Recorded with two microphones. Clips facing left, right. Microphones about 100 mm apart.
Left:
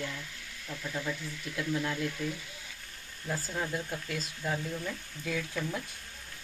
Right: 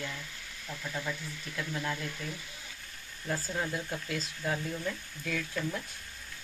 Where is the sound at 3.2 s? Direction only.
Centre (ahead or behind).